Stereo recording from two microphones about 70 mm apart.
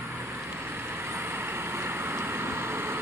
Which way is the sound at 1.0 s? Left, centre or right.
Right.